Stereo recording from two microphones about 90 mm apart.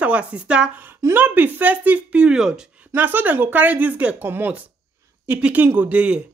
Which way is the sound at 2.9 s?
20° right (ahead or behind).